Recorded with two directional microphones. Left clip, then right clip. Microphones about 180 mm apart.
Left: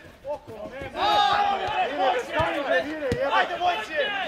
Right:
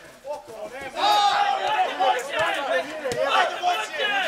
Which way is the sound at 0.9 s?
20° right (ahead or behind).